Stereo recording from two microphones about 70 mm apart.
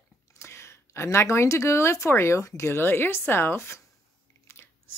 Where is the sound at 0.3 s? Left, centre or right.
Left.